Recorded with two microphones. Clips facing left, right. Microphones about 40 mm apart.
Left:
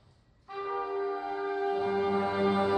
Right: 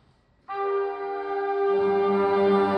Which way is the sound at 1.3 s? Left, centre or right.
Centre.